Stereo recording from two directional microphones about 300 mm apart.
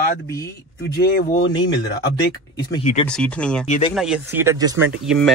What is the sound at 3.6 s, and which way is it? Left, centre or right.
Speech, left.